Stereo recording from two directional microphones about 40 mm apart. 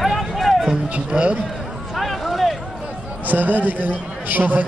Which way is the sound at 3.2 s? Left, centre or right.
Right.